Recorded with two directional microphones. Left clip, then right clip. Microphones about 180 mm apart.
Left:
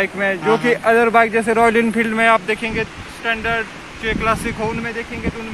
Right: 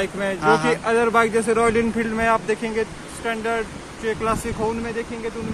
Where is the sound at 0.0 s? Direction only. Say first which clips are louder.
Left 5 dB; 30° left (ahead or behind).